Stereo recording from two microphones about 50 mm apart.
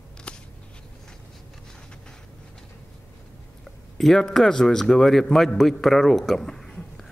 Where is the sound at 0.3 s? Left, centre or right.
Left.